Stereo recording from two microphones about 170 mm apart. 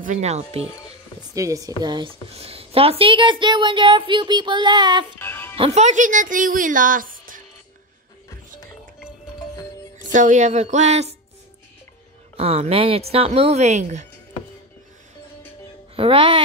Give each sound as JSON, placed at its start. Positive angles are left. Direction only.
{"t": 0.0, "sound": "a woman's voice", "side_deg": -45}
{"t": 1.3, "sound": "a woman's voice", "side_deg": -20}
{"t": 5.2, "sound": "music", "side_deg": 15}
{"t": 5.6, "sound": "speech", "side_deg": -45}
{"t": 9.9, "sound": "speech", "side_deg": -50}
{"t": 12.4, "sound": "a woman's voice", "side_deg": -35}
{"t": 16.0, "sound": "a woman's voice", "side_deg": -30}